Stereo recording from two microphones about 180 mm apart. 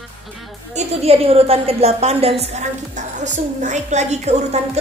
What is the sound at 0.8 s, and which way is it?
A woman's voice, 35° right (ahead or behind).